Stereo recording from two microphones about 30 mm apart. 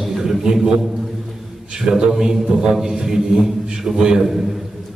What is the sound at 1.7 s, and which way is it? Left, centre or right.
A man's voice, centre.